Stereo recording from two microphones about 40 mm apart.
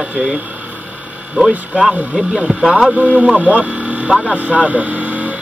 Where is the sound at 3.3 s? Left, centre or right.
Right.